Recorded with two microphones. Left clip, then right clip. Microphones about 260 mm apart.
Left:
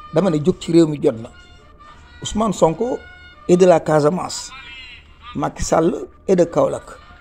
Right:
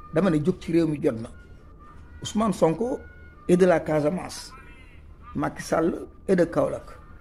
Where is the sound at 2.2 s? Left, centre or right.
Centre.